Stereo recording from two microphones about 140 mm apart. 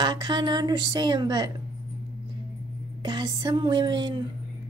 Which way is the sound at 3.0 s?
30° right (ahead or behind).